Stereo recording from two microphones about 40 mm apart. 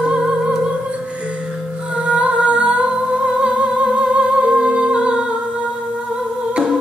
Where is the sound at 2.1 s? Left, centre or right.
Right.